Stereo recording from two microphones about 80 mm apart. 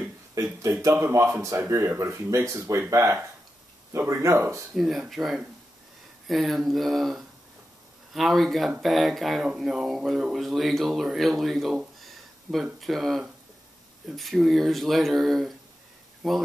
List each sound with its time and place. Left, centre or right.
0.3 s a man's voice: right
4.7 s speech: centre